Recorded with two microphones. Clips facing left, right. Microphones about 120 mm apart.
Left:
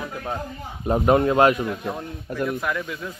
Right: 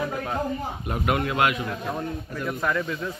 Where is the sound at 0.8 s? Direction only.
30° left (ahead or behind).